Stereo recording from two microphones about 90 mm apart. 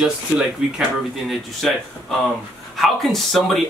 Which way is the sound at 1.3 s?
Centre (ahead or behind).